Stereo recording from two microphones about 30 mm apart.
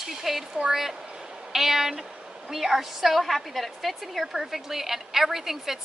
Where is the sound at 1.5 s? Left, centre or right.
Centre.